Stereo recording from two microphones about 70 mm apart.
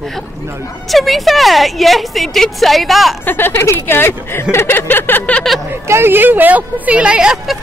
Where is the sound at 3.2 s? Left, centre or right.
Left.